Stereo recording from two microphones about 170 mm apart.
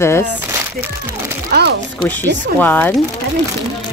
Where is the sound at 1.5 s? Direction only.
70° right (ahead or behind).